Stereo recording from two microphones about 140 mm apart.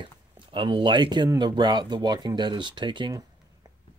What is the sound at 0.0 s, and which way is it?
Speech, 35° right (ahead or behind).